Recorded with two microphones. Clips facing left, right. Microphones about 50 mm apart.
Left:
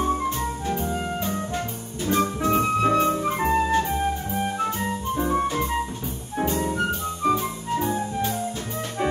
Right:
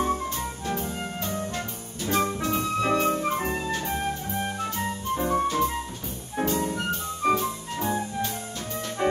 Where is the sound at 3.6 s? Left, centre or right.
Left.